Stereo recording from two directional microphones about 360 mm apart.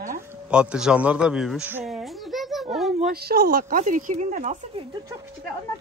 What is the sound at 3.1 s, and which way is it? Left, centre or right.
Speech, right.